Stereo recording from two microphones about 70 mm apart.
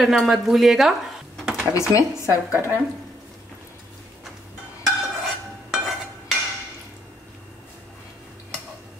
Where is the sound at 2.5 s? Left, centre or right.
Right.